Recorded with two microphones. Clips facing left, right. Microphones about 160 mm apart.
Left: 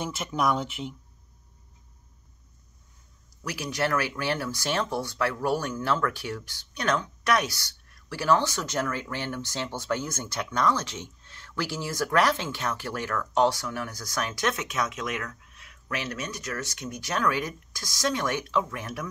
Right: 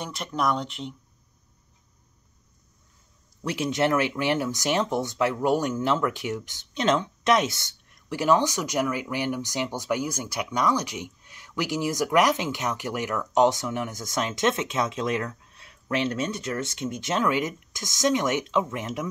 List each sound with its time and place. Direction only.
0.0 s speech: 5° left (ahead or behind)
3.4 s speech: 25° right (ahead or behind)